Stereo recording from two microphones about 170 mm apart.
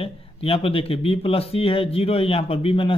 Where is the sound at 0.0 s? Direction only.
35° left (ahead or behind).